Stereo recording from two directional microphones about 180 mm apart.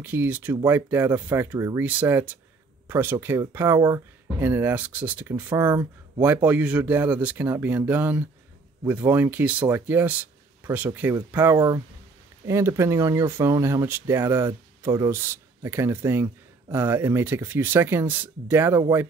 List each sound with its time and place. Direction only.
0.0 s speech: 10° right (ahead or behind)